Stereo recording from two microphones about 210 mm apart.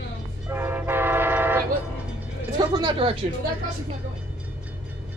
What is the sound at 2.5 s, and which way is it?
Speech, 20° right (ahead or behind).